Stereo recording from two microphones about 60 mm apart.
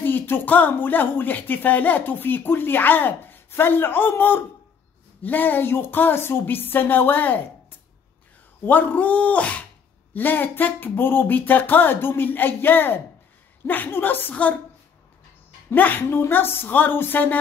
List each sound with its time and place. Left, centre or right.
0.0 s a woman's voice: left
8.6 s a man's voice: left
10.1 s a woman's voice: left
15.7 s a woman's voice: left